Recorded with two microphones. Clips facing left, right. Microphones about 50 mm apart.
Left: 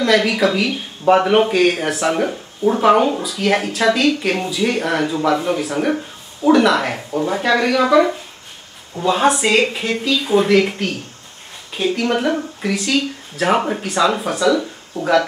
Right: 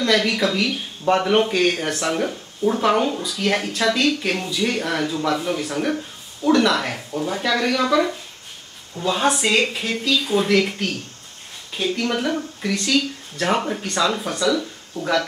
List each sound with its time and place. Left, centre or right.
0.0 s speech: centre
5.9 s a sound: centre
6.5 s speech: centre